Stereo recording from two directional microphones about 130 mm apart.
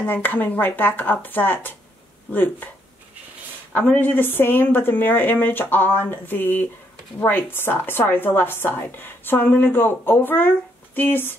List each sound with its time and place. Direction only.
0.0 s a woman's voice: 15° left (ahead or behind)
3.7 s a woman's voice: 10° left (ahead or behind)